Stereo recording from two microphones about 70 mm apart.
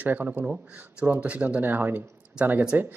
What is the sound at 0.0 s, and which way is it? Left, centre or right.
Speech, right.